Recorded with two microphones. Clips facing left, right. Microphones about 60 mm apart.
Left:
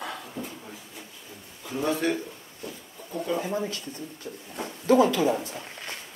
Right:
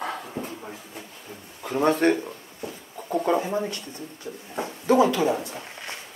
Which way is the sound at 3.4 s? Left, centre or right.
Centre.